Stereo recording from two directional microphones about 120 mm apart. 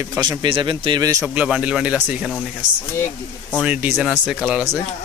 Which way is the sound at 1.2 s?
10° right (ahead or behind).